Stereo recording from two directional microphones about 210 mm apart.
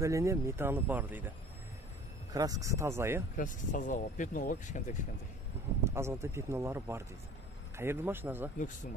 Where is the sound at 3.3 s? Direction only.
40° left (ahead or behind).